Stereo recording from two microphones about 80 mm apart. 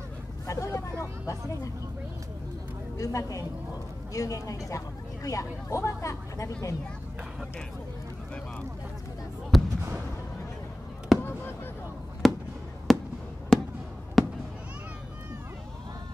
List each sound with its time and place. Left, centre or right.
0.5 s vehicle: left
1.2 s speech: left
3.0 s speech: left
9.5 s speech: centre
11.1 s fireworks: centre
12.2 s a sound: centre
12.9 s fireworks: centre